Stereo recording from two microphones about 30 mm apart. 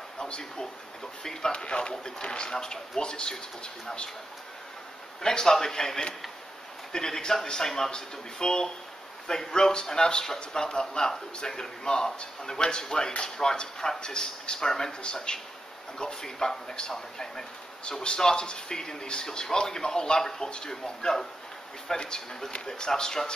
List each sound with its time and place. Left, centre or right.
0.2 s speech: left
1.5 s speech: left
5.2 s speech: left
15.3 s speech: left